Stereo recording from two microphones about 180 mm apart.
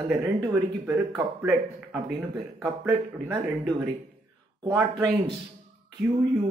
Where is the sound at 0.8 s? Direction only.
10° right (ahead or behind).